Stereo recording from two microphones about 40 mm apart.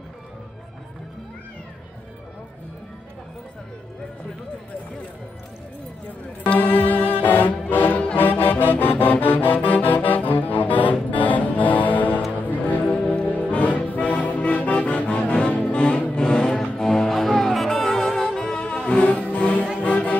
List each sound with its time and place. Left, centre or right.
6.4 s music: left
12.9 s music: left
19.3 s music: left